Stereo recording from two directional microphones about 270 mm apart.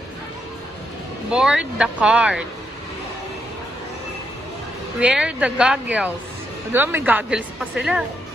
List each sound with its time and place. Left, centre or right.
1.3 s speech: centre
5.0 s speech: centre